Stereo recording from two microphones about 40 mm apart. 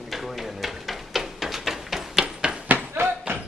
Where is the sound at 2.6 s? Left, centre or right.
Right.